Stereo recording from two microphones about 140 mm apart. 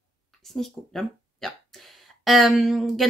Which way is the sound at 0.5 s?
Centre (ahead or behind).